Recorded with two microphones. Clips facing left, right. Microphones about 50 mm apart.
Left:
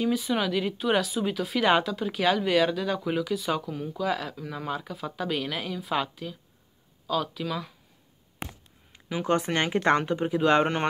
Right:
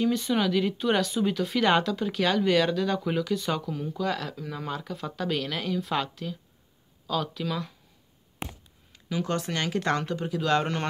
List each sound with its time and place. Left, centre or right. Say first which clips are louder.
0.0 s speech: right 1 dB; centre
8.9 s speech: left 3 dB; left